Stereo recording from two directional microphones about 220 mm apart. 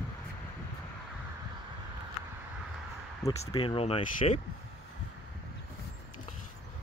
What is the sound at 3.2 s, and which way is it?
Speech, 25° left (ahead or behind).